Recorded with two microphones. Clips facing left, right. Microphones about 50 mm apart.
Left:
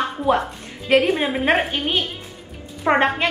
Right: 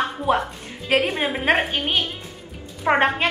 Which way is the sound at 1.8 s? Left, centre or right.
Centre.